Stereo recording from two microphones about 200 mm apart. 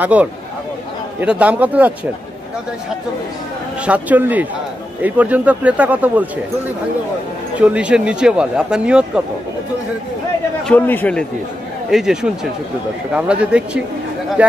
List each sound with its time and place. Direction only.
0.0 s speech: 5° right (ahead or behind)
3.8 s speech: 5° right (ahead or behind)
7.5 s speech: 5° right (ahead or behind)
10.7 s a man's voice: 10° left (ahead or behind)